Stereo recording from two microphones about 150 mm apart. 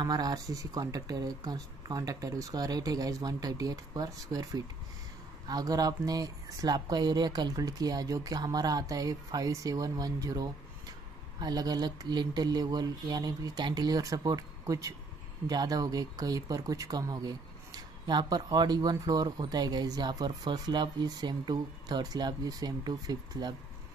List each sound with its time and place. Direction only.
0.0 s speech: 25° right (ahead or behind)